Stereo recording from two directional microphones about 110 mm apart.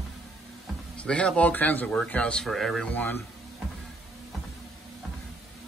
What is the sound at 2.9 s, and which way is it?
Speech, 20° left (ahead or behind).